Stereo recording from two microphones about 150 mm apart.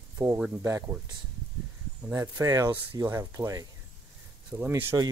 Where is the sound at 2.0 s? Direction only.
15° right (ahead or behind).